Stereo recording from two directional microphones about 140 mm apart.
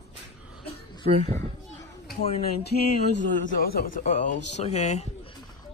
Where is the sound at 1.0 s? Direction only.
60° right (ahead or behind).